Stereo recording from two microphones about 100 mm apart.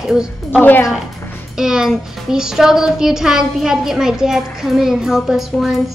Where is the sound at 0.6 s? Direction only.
15° left (ahead or behind).